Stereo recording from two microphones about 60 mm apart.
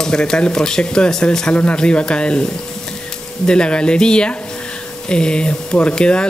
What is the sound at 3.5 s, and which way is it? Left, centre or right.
Speech, centre.